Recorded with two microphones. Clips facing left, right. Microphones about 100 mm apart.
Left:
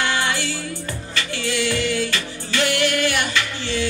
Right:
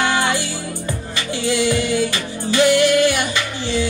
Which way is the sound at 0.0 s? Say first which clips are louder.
Right 4 dB; 15° right (ahead or behind).